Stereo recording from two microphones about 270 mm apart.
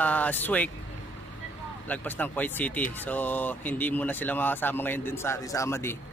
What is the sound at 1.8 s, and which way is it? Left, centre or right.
Speech, centre.